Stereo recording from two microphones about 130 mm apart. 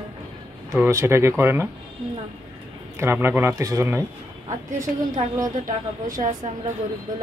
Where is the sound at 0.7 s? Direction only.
20° right (ahead or behind).